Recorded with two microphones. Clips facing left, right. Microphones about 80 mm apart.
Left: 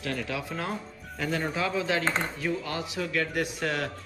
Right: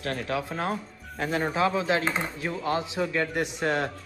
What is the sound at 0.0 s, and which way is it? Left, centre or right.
Speech, right.